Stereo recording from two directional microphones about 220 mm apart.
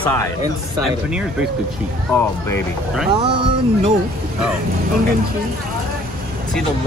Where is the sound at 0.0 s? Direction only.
10° left (ahead or behind).